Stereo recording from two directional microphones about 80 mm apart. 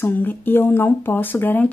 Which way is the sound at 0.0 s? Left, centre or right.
Left.